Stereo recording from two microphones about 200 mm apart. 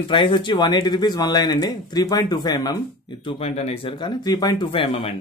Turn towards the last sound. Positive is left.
turn(degrees=30)  # may be behind; listen again after turning